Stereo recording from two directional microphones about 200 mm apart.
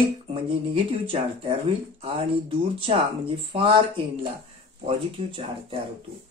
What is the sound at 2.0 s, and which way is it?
Speech, 25° right (ahead or behind).